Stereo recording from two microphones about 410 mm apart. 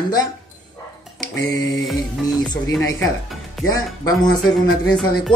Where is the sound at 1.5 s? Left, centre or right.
Centre.